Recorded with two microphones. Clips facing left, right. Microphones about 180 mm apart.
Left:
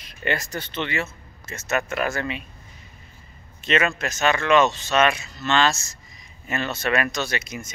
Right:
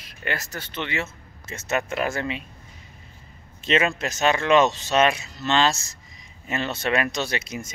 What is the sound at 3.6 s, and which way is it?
A man's voice, 30° right (ahead or behind).